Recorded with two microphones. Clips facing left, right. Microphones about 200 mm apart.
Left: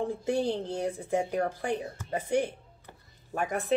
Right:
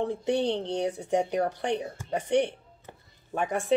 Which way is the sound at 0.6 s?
5° left (ahead or behind).